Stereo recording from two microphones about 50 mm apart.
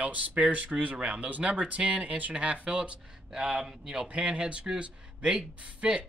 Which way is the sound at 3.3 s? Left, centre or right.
Centre.